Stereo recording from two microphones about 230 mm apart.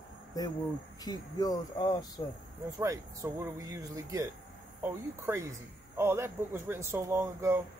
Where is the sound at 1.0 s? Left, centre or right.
Centre.